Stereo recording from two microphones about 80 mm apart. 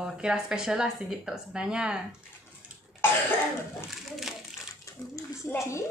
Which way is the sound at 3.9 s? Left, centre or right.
Centre.